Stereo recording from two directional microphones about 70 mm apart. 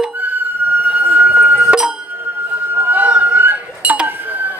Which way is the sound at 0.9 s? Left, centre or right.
Right.